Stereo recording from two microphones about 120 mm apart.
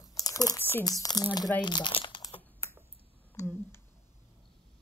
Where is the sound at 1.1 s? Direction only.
5° left (ahead or behind).